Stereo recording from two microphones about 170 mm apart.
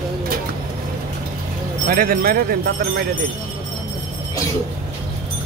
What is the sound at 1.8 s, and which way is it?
Speech, 55° right (ahead or behind).